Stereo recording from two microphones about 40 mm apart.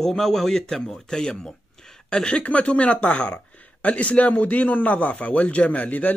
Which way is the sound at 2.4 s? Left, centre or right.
Left.